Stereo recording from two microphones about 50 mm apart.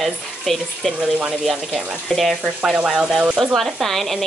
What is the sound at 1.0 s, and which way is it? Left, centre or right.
Speech, right.